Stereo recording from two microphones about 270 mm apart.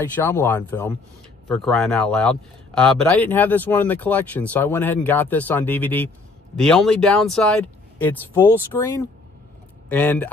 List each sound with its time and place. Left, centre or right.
0.1 s speech: centre